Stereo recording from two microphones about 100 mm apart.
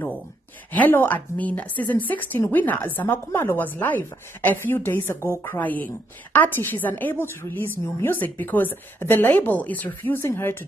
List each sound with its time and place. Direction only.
0.7 s a woman's voice: 20° left (ahead or behind)